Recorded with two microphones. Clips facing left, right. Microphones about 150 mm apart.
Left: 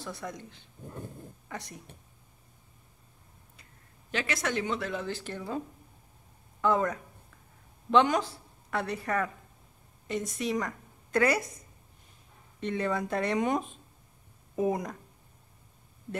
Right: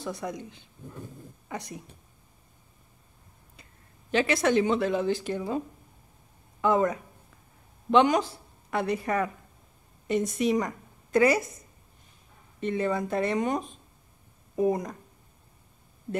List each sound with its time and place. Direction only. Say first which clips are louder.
0.0 s speech: right 5 dB; 15° right (ahead or behind)
4.1 s a woman's voice: right 8 dB; 30° right (ahead or behind); by 5.6 s 15° right (ahead or behind)
6.6 s a woman's voice: right 3 dB; 10° right (ahead or behind)
12.5 s speech: right 3 dB; 5° right (ahead or behind)